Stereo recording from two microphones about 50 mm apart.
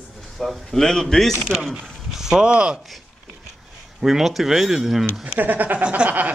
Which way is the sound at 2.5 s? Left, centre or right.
Right.